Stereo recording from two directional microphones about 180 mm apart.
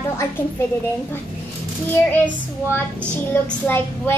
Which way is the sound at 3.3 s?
10° left (ahead or behind).